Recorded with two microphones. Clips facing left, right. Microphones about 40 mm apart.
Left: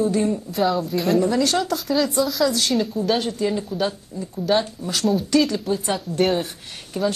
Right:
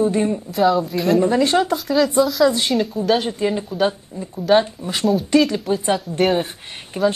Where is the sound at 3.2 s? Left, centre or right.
Right.